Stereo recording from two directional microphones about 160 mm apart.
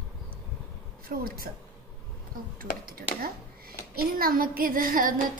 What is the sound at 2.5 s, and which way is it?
Speech, 70° right (ahead or behind).